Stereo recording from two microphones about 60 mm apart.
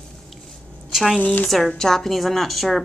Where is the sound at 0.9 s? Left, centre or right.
Centre.